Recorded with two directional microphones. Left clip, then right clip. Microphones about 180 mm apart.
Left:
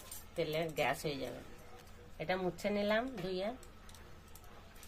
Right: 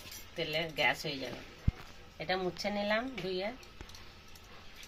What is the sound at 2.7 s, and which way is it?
Speech, 20° left (ahead or behind).